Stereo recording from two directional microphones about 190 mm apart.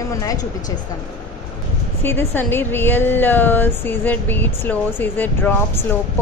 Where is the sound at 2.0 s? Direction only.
10° left (ahead or behind).